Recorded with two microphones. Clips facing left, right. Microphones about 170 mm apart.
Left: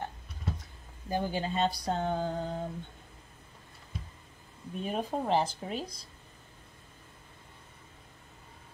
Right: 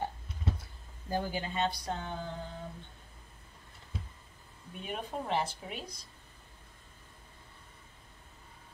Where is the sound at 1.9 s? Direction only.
40° left (ahead or behind).